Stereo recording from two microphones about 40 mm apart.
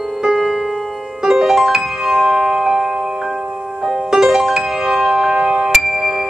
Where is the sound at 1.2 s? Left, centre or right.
Centre.